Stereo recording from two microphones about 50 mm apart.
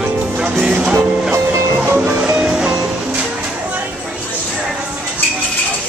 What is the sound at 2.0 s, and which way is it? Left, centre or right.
Music, right.